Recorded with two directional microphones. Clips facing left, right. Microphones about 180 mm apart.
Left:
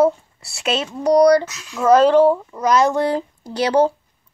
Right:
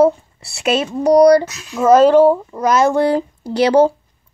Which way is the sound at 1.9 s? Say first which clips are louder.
Right 3 dB; 5° right (ahead or behind).